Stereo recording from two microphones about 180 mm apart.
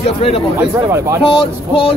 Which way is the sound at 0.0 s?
35° left (ahead or behind).